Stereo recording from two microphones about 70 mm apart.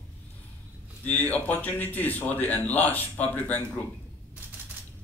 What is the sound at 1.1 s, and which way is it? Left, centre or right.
A man's voice, left.